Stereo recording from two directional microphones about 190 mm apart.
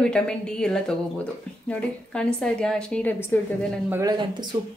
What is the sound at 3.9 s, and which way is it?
Speech, 15° right (ahead or behind).